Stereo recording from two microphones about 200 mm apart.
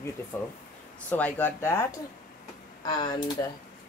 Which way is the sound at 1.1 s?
10° left (ahead or behind).